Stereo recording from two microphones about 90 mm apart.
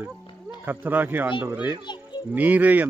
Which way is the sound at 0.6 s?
20° right (ahead or behind).